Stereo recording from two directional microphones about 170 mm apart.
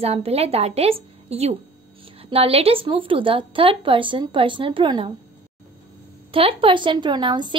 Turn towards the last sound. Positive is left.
turn(degrees=-25)  # may be behind; listen again after turning